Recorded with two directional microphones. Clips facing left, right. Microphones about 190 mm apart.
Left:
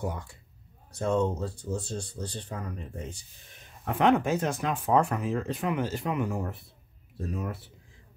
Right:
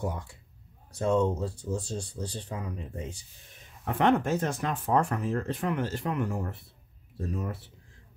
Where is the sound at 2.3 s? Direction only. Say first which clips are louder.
Even; 5° right (ahead or behind).